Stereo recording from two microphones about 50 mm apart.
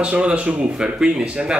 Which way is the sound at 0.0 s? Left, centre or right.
Right.